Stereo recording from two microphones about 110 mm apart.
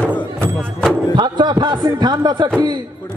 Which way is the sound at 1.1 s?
40° right (ahead or behind).